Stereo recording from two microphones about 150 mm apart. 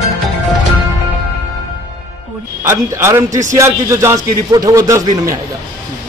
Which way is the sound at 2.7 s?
15° right (ahead or behind).